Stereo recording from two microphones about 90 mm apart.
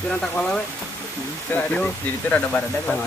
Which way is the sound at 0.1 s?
10° left (ahead or behind).